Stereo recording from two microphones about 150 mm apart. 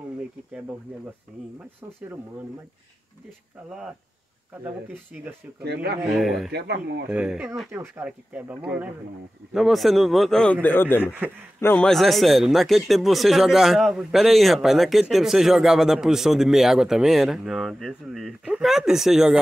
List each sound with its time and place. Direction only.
5.1 s speech: 5° right (ahead or behind)
5.6 s speech: 90° right
6.1 s speech: centre (ahead or behind)
6.5 s speech: 90° right
7.1 s speech: 5° right (ahead or behind); by 11.1 s 15° left (ahead or behind)
11.7 s speech: 5° left (ahead or behind)